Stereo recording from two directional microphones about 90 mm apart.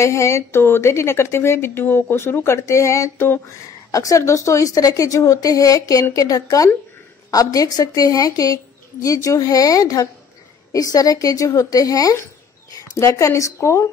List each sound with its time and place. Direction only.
0.0 s a woman's voice: 35° left (ahead or behind)